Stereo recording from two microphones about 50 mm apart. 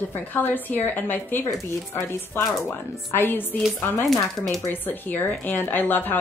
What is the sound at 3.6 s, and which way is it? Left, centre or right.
Speech, centre.